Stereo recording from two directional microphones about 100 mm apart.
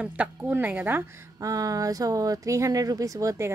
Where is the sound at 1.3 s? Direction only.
35° right (ahead or behind).